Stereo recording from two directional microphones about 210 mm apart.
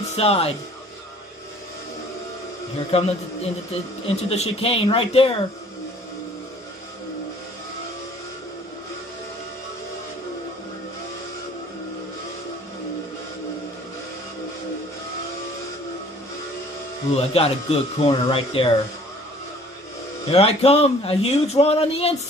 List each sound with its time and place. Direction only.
0.1 s a man's voice: 30° left (ahead or behind)
2.9 s a man's voice: 30° left (ahead or behind)
4.1 s a man's voice: 30° left (ahead or behind)
17.1 s a man's voice: 30° left (ahead or behind)
20.2 s a man's voice: 30° left (ahead or behind)